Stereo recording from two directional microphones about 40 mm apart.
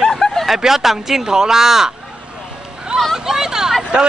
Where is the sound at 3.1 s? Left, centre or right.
Centre.